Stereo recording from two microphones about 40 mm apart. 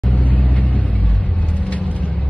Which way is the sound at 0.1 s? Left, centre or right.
Left.